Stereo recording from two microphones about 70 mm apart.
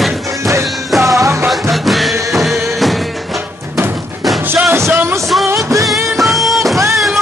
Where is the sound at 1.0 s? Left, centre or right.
Right.